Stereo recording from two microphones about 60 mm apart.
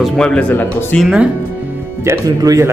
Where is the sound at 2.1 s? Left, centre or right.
Right.